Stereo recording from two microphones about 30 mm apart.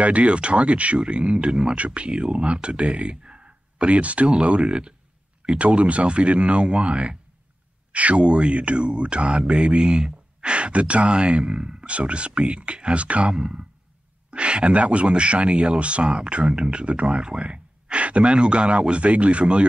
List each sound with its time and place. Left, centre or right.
0.0 s speech: right
1.5 s speech: centre
1.8 s speech: right
4.3 s speech: right
7.9 s speech: right
14.3 s speech: right
16.7 s speech: right
17.2 s speech: right